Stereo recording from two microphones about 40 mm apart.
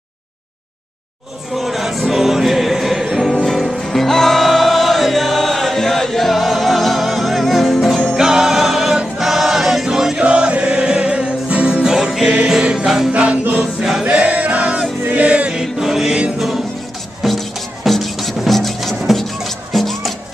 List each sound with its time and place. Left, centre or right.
1.5 s music: centre
3.6 s music: centre
8.2 s music: centre
9.2 s choir: centre
10.2 s music: right; by 13.1 s centre
13.1 s music: right
14.0 s choir: right
14.6 s music: centre
15.1 s music: right
15.6 s music: centre